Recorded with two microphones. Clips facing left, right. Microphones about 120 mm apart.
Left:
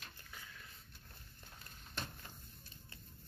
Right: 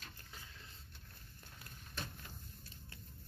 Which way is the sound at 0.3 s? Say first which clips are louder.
Left 1 dB; 30° right (ahead or behind).